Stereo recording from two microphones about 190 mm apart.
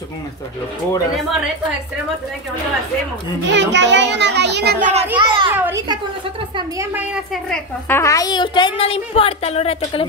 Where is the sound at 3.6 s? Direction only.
70° right (ahead or behind).